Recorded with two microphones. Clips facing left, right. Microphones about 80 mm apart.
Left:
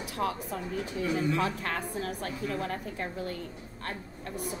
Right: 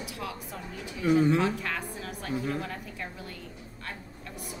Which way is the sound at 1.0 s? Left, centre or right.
Right.